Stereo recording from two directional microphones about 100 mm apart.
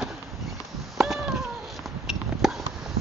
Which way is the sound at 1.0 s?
Centre (ahead or behind).